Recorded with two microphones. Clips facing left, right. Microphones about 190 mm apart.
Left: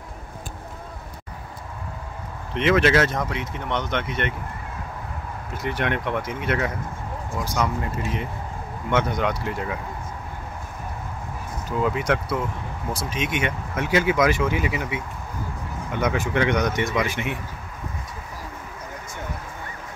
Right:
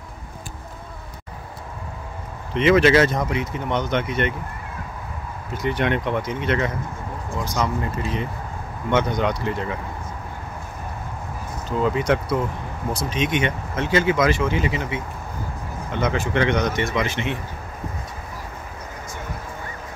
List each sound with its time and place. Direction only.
2.5 s speech: centre (ahead or behind)
5.5 s speech: centre (ahead or behind)
8.9 s speech: 5° left (ahead or behind)
11.8 s speech: 5° left (ahead or behind)